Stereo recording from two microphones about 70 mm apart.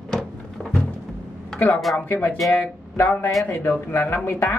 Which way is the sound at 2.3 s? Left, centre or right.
Centre.